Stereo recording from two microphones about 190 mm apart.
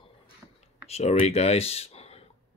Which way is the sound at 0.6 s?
35° left (ahead or behind).